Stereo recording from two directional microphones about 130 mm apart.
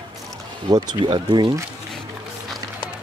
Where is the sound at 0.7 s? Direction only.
30° right (ahead or behind).